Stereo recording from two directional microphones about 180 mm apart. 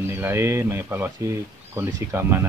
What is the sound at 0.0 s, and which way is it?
Speech, 15° right (ahead or behind).